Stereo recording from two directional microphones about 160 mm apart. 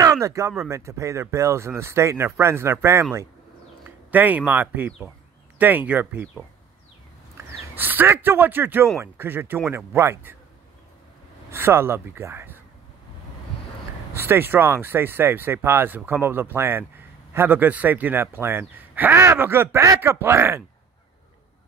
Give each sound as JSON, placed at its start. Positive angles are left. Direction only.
{"t": 0.0, "sound": "a man's voice", "side_deg": -20}
{"t": 11.5, "sound": "a man's voice", "side_deg": -15}
{"t": 14.1, "sound": "a man's voice", "side_deg": -15}